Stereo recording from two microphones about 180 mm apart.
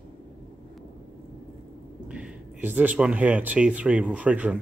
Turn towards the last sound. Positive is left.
turn(degrees=-5)  # may be behind; listen again after turning